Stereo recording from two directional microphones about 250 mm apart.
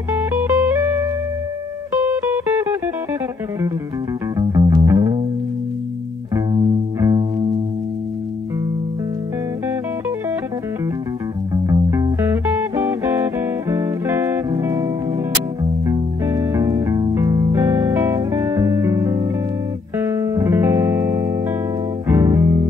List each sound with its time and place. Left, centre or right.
0.1 s music: centre
2.0 s music: centre
4.4 s music: centre
6.3 s music: centre
11.5 s music: centre